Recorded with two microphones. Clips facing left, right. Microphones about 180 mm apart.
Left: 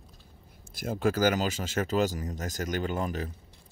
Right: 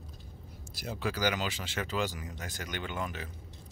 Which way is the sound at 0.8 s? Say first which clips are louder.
Left 7 dB; 45° left (ahead or behind).